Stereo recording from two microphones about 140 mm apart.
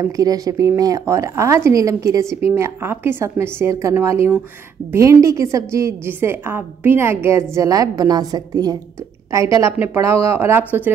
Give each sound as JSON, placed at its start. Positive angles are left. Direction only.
{"t": 0.0, "sound": "a woman's voice", "side_deg": -25}